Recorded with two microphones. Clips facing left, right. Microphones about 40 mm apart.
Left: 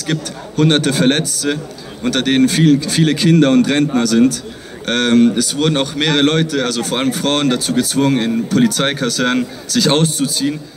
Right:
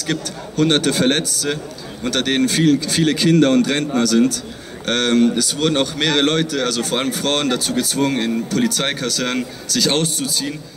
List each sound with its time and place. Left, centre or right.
0.0 s a man's voice: left